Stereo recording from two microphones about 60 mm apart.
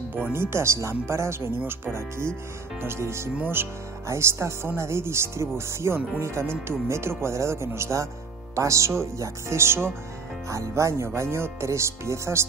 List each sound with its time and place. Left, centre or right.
0.3 s speech: right
10.5 s speech: right